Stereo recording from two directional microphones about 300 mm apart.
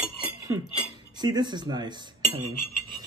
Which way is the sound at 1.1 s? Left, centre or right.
Centre.